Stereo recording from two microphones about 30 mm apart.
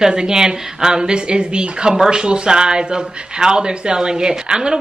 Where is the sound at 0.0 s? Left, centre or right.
Right.